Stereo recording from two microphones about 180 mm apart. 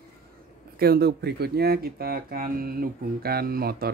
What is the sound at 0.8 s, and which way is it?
Speech, 60° right (ahead or behind).